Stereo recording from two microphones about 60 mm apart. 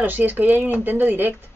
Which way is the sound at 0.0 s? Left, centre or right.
Right.